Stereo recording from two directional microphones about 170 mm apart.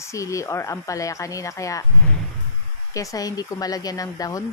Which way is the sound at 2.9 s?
20° left (ahead or behind).